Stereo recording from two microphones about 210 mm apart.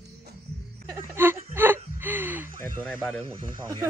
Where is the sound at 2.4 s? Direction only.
40° right (ahead or behind).